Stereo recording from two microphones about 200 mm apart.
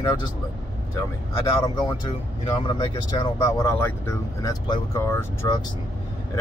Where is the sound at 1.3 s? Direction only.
25° left (ahead or behind).